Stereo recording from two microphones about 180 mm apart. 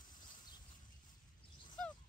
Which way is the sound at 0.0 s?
25° left (ahead or behind).